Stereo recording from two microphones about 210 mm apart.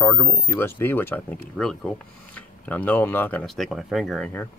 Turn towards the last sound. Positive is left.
turn(degrees=5)  # may be behind; listen again after turning